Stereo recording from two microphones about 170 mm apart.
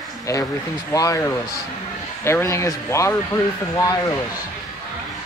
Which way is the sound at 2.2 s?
15° left (ahead or behind).